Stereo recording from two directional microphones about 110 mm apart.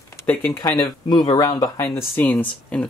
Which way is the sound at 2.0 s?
20° left (ahead or behind).